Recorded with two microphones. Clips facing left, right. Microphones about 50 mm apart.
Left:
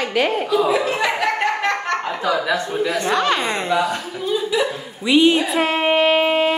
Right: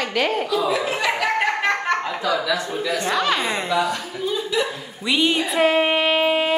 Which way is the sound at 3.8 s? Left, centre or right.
Centre.